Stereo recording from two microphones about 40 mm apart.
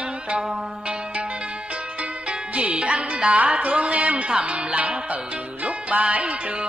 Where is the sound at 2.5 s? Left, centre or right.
Right.